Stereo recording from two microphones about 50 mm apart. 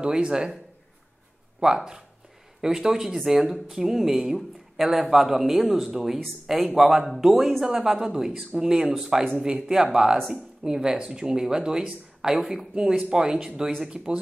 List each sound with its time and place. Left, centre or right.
0.0 s speech: centre
1.6 s speech: centre
12.4 s speech: centre
13.1 s speech: centre